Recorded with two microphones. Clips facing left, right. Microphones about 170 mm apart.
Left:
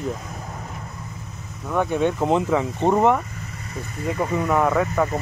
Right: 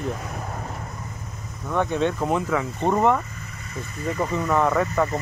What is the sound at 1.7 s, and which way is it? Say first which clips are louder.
Speech: left 2 dB; 10° left (ahead or behind).